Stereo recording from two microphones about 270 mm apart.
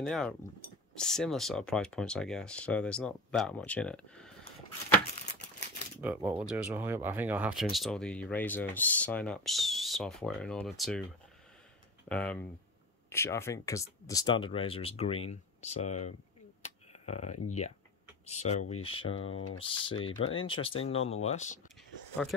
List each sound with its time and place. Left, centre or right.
0.0 s speech: centre
5.1 s crumpling: left
5.9 s speech: centre
12.1 s speech: centre; by 16.1 s left
16.6 s a sound: left
17.5 s speech: left